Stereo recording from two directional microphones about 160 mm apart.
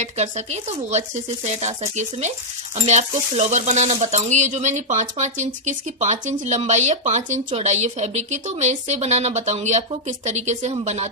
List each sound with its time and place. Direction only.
0.9 s speech: 45° right (ahead or behind)